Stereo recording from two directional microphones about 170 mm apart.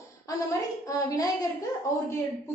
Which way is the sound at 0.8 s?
20° left (ahead or behind).